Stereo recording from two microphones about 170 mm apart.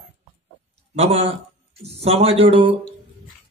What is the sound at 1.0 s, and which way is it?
A man's voice, 35° right (ahead or behind).